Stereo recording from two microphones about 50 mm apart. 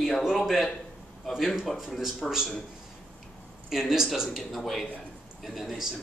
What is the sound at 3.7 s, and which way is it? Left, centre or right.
Speech, centre.